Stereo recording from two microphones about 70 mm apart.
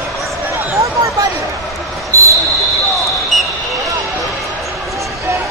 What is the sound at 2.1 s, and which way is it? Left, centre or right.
Basketball bounce, right.